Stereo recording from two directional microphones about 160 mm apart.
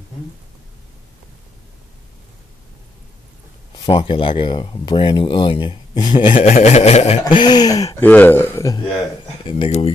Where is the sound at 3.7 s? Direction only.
35° left (ahead or behind).